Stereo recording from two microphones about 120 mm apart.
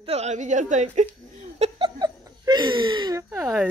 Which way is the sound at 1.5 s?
60° right (ahead or behind).